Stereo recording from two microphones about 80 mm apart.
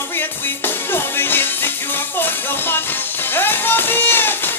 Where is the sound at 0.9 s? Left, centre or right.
Left.